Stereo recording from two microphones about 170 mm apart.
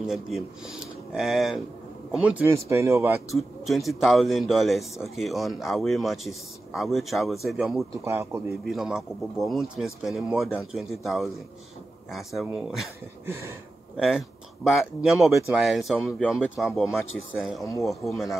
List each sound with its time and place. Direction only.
0.0 s a man's voice: 5° right (ahead or behind)
3.3 s a man's voice: centre (ahead or behind)
8.0 s speech: 15° right (ahead or behind)
8.6 s a man's voice: centre (ahead or behind)
12.4 s a man's voice: centre (ahead or behind)
13.9 s a man's voice: 5° right (ahead or behind)